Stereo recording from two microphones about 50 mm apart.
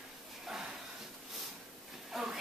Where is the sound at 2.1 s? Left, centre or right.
Centre.